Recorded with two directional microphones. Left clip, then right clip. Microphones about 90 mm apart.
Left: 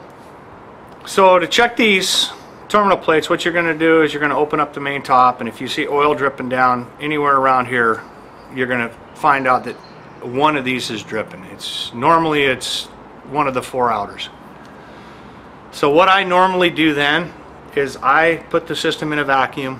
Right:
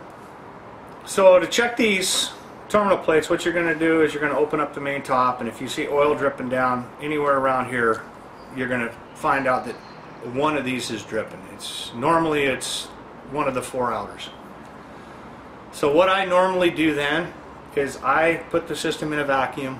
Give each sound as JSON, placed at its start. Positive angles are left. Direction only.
{"t": 1.0, "sound": "speech", "side_deg": 20}
{"t": 15.7, "sound": "speech", "side_deg": 20}